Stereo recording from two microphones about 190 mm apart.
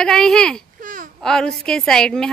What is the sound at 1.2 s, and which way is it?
A woman's voice, 5° left (ahead or behind).